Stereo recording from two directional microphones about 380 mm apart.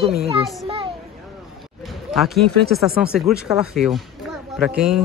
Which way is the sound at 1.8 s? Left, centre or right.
Centre.